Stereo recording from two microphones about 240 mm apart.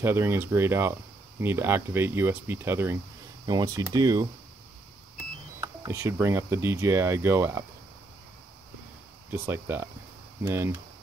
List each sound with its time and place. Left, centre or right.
0.0 s speech: centre
9.3 s speech: centre